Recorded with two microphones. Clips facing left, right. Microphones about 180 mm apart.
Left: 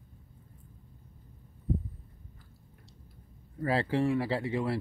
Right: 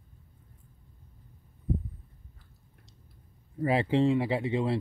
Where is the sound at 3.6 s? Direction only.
20° right (ahead or behind).